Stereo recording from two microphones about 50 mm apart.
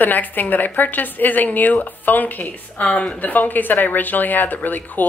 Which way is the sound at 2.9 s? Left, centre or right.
Left.